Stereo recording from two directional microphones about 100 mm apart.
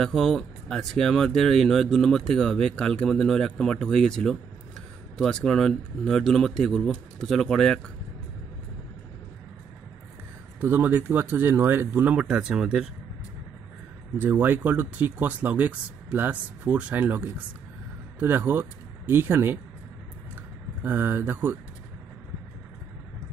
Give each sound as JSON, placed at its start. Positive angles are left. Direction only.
{"t": 0.0, "sound": "speech", "side_deg": 5}
{"t": 10.6, "sound": "speech", "side_deg": -20}
{"t": 14.1, "sound": "speech", "side_deg": -20}
{"t": 20.8, "sound": "speech", "side_deg": -20}